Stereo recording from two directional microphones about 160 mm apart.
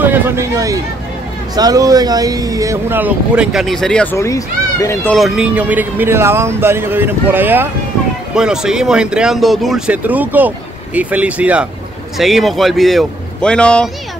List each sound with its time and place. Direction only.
0.0 s speech: 15° right (ahead or behind); by 5.1 s 20° left (ahead or behind)
5.1 s speech: centre (ahead or behind)